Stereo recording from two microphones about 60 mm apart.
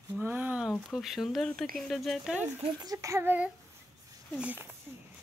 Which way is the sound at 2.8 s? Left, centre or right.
Right.